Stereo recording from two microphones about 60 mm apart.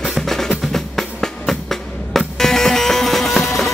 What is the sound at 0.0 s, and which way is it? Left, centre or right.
Music, centre.